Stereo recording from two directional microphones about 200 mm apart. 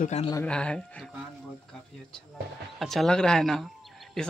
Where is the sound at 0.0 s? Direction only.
35° left (ahead or behind).